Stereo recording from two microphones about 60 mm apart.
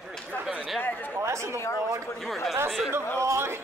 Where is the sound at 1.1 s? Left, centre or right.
Right.